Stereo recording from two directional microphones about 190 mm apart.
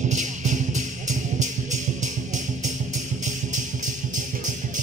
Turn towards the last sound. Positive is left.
turn(degrees=-40)  # may be behind; listen again after turning